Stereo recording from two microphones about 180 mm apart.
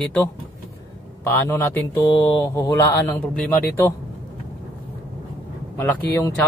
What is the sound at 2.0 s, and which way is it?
Speech, 30° left (ahead or behind).